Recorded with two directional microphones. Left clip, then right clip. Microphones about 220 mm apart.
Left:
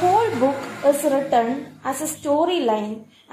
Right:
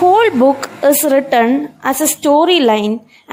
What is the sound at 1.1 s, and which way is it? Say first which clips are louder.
A woman's voice: right 7 dB; 45° right (ahead or behind).